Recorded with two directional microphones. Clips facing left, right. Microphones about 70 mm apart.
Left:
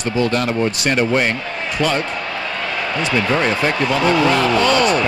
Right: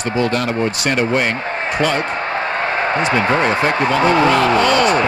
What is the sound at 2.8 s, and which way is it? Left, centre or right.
Speech, right.